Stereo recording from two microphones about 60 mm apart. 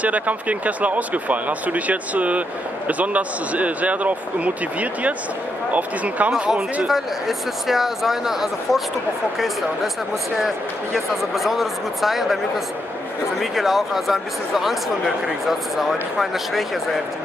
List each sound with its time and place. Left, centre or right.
0.0 s speech: right
6.9 s speech: centre
10.3 s speech: centre
13.4 s speech: centre